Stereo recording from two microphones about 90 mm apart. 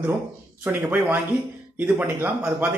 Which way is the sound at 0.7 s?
20° right (ahead or behind).